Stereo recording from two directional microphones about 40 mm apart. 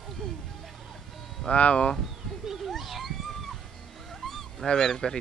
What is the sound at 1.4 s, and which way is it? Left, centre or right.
Speech, left.